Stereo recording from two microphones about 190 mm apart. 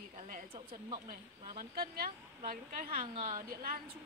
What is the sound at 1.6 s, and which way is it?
A woman's voice, 50° right (ahead or behind).